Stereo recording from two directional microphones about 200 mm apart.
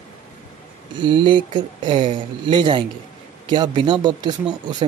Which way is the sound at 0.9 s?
25° right (ahead or behind).